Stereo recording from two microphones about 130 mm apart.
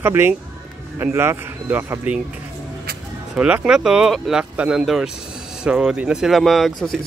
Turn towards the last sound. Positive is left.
turn(degrees=0)  # may be behind; listen again after turning